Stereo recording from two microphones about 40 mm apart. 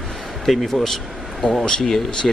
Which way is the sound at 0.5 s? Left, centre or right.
Centre.